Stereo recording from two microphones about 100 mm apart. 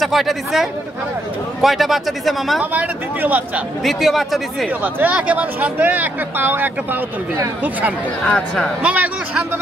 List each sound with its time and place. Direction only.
0.0 s a man's voice: centre (ahead or behind)
2.6 s speech: 15° right (ahead or behind)
3.8 s a man's voice: centre (ahead or behind)
4.8 s speech: 20° right (ahead or behind)
8.3 s speech: 10° left (ahead or behind)
8.8 s speech: 15° right (ahead or behind)